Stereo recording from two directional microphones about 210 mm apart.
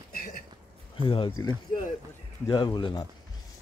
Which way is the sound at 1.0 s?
25° left (ahead or behind).